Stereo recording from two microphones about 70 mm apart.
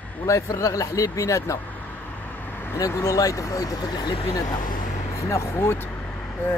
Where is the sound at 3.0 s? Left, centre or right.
Left.